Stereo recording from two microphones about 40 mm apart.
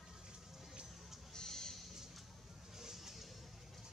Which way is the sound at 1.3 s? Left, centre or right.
Centre.